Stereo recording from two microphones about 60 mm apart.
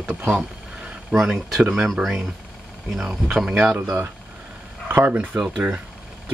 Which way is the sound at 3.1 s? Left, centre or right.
Centre.